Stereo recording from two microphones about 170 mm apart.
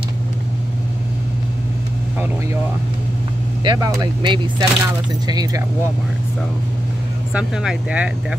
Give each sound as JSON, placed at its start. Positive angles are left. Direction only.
{"t": 3.6, "sound": "speech", "side_deg": -25}
{"t": 7.3, "sound": "speech", "side_deg": -5}